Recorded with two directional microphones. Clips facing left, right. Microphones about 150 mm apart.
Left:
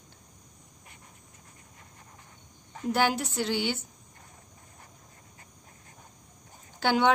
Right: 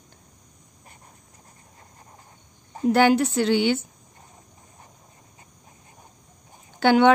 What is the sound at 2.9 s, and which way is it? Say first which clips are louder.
Speech: right 9 dB; 65° right (ahead or behind).